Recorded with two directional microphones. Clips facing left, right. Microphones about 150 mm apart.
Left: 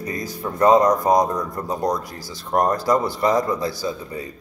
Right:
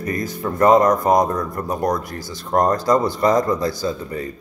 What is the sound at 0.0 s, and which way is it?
Speech, 15° left (ahead or behind).